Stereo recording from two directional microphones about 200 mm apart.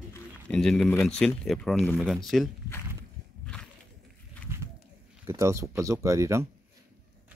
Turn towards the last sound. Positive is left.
turn(degrees=-15)  # may be behind; listen again after turning